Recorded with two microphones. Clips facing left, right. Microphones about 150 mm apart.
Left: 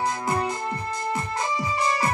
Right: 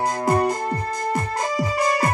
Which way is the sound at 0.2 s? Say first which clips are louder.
Right 6 dB; 40° right (ahead or behind).